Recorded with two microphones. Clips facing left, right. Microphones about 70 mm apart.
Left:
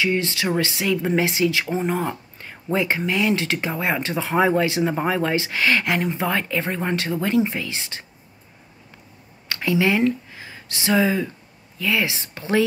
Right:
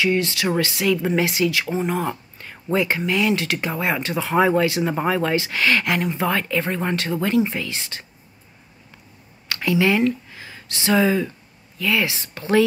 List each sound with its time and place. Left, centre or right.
0.0 s speech: left
9.5 s speech: left